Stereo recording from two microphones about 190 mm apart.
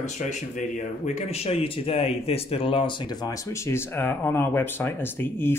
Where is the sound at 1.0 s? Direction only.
35° left (ahead or behind).